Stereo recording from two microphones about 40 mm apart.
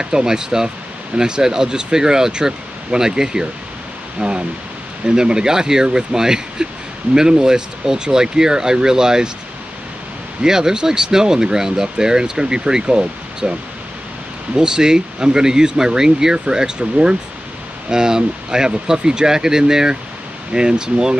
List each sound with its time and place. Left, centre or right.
0.0 s speech: centre
10.4 s speech: centre